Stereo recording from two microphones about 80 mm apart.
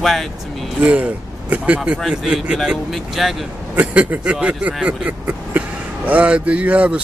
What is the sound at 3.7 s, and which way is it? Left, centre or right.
A man's voice, centre.